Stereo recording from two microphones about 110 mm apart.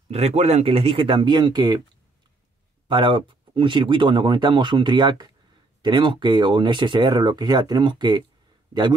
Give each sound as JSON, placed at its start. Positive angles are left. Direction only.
{"t": 0.1, "sound": "speech", "side_deg": -75}
{"t": 2.9, "sound": "speech", "side_deg": -50}